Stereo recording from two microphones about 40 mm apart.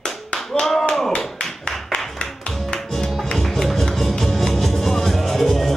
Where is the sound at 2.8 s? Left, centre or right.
Centre.